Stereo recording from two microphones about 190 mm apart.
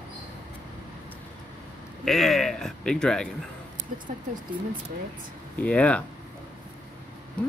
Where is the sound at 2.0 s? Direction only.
Centre (ahead or behind).